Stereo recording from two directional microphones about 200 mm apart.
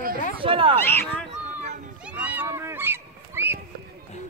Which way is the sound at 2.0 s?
5° right (ahead or behind).